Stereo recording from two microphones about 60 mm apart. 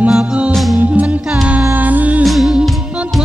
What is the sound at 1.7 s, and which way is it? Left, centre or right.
Music, right.